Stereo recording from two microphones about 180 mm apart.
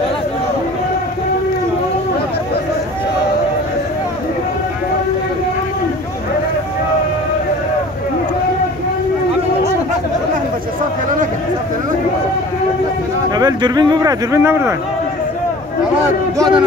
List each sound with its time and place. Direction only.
13.3 s speech: 20° right (ahead or behind)
16.3 s speech: 25° right (ahead or behind)